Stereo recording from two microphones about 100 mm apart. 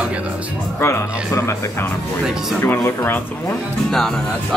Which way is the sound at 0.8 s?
30° left (ahead or behind).